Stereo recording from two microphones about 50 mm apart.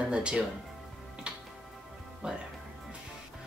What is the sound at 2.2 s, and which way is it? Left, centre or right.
Speech, right.